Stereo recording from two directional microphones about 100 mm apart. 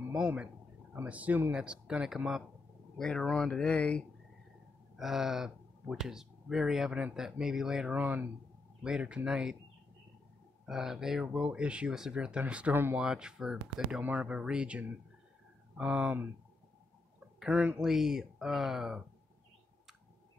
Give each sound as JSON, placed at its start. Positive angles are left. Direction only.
{"t": 0.1, "sound": "speech", "side_deg": -10}
{"t": 3.0, "sound": "speech", "side_deg": 5}
{"t": 4.9, "sound": "speech", "side_deg": -5}
{"t": 8.0, "sound": "speech", "side_deg": -20}
{"t": 10.6, "sound": "speech", "side_deg": -5}
{"t": 17.4, "sound": "speech", "side_deg": -10}